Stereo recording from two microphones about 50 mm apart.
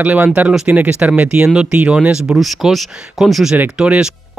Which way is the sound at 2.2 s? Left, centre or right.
Centre.